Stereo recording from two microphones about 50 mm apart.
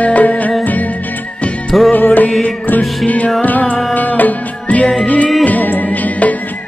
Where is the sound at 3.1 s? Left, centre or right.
Left.